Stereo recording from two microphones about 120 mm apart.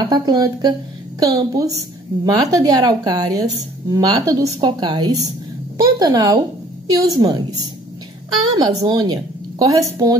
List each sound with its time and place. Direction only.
0.0 s a woman's voice: 35° right (ahead or behind)
4.6 s a woman's voice: 40° right (ahead or behind)